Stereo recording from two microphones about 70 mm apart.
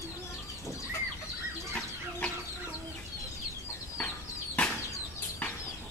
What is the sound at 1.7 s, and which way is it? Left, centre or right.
Chicken, centre.